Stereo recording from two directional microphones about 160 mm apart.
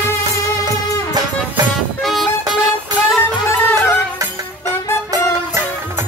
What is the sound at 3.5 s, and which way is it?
Music, 15° left (ahead or behind).